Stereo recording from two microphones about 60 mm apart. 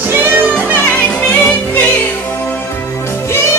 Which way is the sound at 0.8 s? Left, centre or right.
Centre.